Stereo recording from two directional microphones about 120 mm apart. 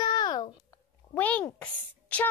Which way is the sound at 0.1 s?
35° left (ahead or behind).